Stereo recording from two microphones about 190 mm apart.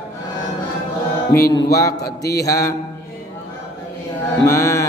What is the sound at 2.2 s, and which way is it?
Mantra, 60° left (ahead or behind).